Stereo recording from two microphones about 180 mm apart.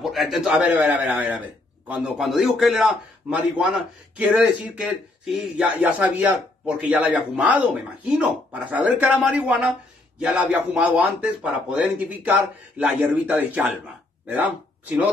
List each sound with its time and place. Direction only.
0.0 s a man's voice: centre (ahead or behind)